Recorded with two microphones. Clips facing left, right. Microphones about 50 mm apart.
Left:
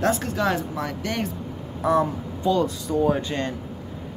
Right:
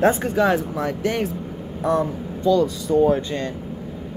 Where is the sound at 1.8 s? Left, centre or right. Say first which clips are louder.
Even; centre.